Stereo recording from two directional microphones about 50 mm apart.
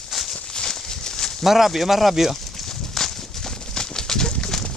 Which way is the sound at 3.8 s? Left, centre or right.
Centre.